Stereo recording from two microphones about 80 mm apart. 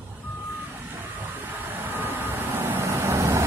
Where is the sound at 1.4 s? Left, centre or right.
Right.